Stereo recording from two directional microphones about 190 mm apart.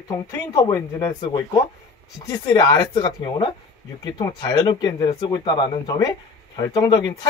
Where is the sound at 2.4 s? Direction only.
20° left (ahead or behind).